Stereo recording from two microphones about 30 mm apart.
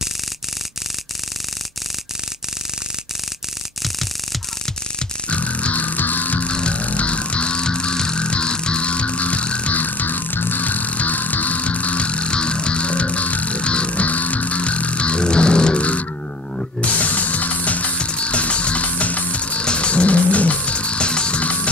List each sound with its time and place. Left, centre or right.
5.3 s music: left
6.4 s music: left
6.8 s music: left
9.7 s music: left
15.8 s a sound: left
16.5 s music: left
18.0 s music: left
19.6 s music: left